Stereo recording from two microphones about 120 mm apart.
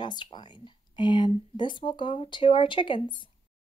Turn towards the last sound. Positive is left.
turn(degrees=40)  # may be behind; listen again after turning